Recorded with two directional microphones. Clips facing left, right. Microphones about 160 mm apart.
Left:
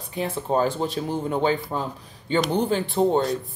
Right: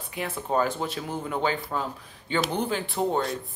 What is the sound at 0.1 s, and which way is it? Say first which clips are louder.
Speech: left 4 dB; 25° left (ahead or behind).